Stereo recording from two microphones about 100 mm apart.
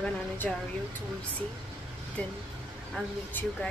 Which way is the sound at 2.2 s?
15° left (ahead or behind).